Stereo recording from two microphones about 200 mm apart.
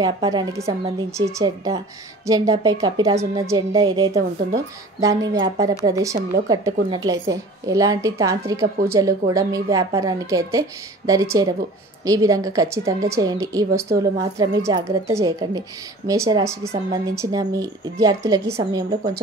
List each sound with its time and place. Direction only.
0.0 s a woman's voice: 20° right (ahead or behind)
5.4 s a woman's voice: 20° right (ahead or behind)